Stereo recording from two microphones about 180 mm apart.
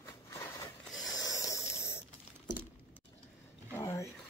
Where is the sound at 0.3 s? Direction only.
20° left (ahead or behind).